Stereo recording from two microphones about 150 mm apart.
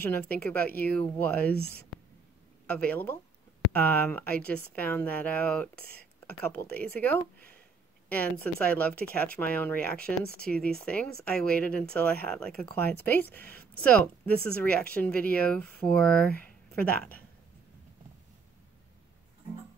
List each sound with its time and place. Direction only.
0.1 s speech: 10° left (ahead or behind)